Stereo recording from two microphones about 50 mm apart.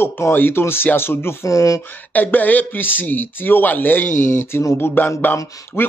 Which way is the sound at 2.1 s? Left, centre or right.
Left.